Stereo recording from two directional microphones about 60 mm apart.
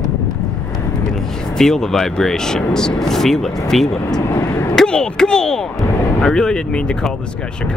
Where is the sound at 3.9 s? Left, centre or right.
Left.